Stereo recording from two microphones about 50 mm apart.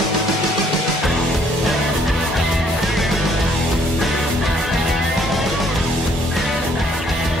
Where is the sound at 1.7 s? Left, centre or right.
Centre.